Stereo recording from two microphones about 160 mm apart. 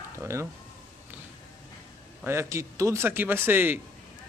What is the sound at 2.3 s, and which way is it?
Speech, 15° right (ahead or behind).